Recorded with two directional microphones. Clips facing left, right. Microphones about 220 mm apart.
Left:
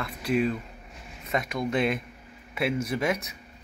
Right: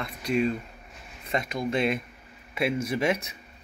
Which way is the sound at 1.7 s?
25° right (ahead or behind).